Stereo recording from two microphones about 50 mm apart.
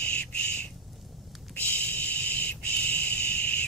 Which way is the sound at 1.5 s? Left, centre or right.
Left.